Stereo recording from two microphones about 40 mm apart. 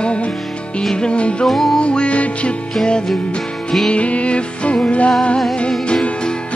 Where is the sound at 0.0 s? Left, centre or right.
Left.